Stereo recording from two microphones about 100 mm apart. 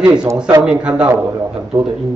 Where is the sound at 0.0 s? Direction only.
10° right (ahead or behind).